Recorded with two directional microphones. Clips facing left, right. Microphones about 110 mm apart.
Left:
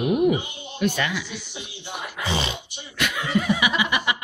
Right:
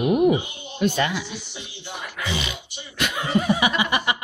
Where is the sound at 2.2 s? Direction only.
30° left (ahead or behind).